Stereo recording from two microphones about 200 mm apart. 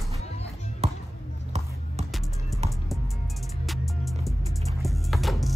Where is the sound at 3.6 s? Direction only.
Centre (ahead or behind).